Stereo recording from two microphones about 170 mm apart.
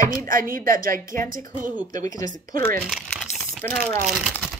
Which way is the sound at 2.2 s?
55° right (ahead or behind).